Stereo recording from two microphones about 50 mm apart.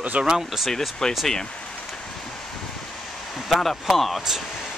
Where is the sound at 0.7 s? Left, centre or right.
Centre.